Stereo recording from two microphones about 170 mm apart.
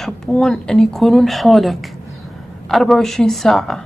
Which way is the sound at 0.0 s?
5° left (ahead or behind).